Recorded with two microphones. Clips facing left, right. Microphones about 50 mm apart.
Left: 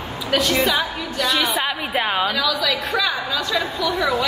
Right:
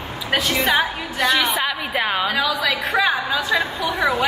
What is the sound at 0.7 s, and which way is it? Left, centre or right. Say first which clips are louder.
Speech: right 2 dB; right.